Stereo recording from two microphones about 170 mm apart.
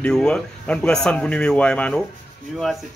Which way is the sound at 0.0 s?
5° left (ahead or behind).